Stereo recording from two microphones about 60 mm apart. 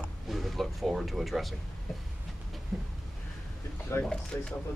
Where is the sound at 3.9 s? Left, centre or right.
Left.